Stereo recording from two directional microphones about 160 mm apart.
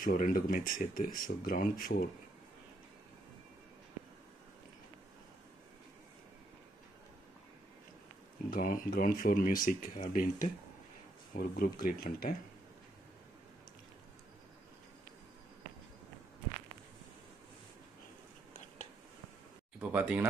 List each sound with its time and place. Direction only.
0.0 s speech: 60° left (ahead or behind)
8.5 s speech: 65° left (ahead or behind)
19.9 s speech: 10° right (ahead or behind)